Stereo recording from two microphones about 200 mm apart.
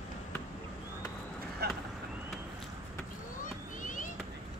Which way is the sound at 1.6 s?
55° right (ahead or behind).